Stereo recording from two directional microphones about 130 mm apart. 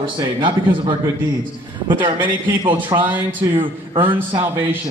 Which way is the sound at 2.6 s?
40° right (ahead or behind).